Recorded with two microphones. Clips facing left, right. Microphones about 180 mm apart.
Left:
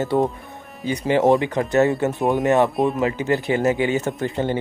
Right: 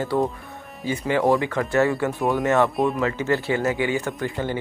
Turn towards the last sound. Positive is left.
turn(degrees=25)  # may be behind; listen again after turning